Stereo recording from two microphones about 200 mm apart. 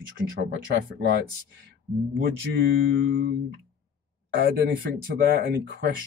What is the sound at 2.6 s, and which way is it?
Mantra, 50° right (ahead or behind).